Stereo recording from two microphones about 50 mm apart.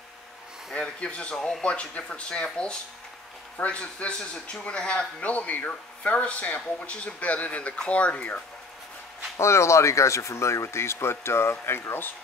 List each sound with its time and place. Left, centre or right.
0.7 s speech: left
9.4 s speech: left